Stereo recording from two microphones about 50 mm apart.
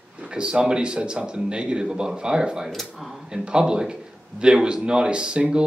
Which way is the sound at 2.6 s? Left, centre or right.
Centre.